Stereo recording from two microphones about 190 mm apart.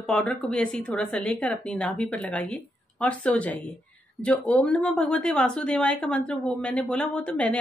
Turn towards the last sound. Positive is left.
turn(degrees=5)  # may be behind; listen again after turning